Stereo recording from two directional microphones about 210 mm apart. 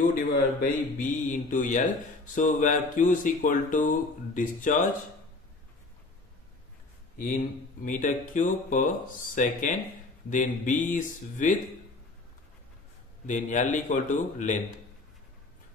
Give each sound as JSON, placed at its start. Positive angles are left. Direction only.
{"t": 0.6, "sound": "speech", "side_deg": 40}
{"t": 7.2, "sound": "speech", "side_deg": 40}
{"t": 13.3, "sound": "speech", "side_deg": 35}